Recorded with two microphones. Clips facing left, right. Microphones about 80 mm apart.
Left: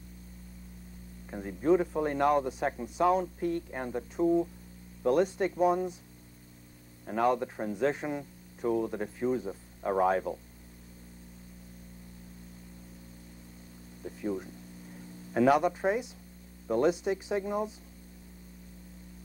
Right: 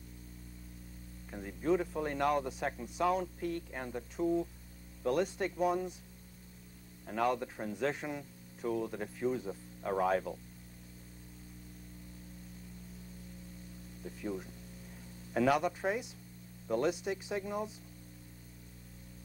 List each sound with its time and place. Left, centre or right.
1.3 s speech: left
7.1 s speech: left
14.0 s a sound: left
15.3 s speech: left